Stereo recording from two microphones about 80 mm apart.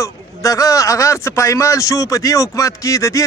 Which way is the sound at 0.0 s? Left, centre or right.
Left.